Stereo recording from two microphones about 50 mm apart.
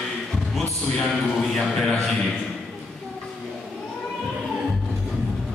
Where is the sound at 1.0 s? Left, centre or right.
Centre.